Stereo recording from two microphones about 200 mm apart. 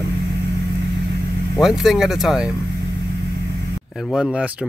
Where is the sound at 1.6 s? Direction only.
Centre (ahead or behind).